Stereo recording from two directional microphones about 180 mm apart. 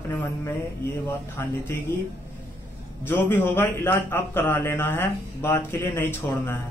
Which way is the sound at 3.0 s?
10° left (ahead or behind).